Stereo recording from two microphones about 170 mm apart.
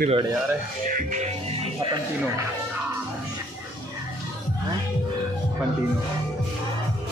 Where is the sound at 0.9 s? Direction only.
45° right (ahead or behind).